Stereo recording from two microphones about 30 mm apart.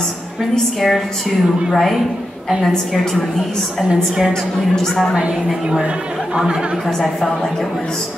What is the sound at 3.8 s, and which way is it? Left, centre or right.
Speech, right.